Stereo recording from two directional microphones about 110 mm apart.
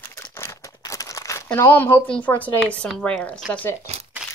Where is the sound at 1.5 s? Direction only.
20° left (ahead or behind).